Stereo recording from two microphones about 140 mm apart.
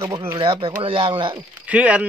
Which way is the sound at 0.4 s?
40° right (ahead or behind).